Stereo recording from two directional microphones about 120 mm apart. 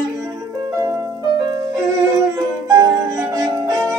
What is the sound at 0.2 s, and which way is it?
Music, 30° right (ahead or behind).